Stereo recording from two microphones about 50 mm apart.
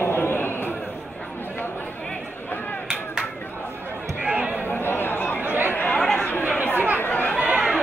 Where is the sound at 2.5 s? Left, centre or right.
Left.